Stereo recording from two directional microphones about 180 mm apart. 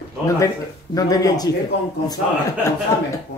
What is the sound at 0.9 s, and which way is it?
Speech, 20° left (ahead or behind).